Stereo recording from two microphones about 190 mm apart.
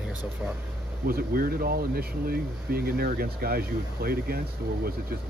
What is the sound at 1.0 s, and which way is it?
Speech, 50° right (ahead or behind).